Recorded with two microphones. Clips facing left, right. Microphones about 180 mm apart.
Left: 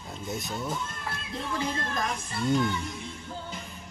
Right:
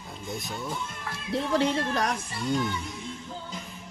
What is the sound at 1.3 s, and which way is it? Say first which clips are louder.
Speech: right 8 dB; 75° right (ahead or behind).